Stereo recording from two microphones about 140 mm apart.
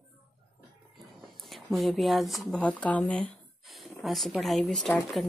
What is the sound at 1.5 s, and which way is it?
Speech, centre (ahead or behind).